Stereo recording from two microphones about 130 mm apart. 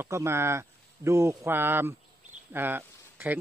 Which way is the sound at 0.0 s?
20° right (ahead or behind).